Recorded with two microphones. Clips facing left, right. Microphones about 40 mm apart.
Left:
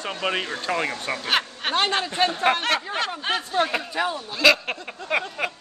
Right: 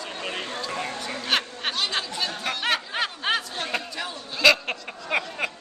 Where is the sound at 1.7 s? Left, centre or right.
Left.